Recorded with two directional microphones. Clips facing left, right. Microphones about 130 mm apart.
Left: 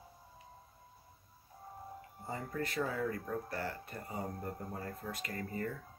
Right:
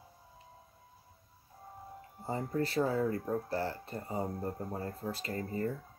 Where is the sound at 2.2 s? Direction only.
30° right (ahead or behind).